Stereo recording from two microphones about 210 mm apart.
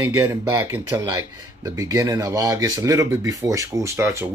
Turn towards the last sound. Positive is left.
turn(degrees=-10)  # may be behind; listen again after turning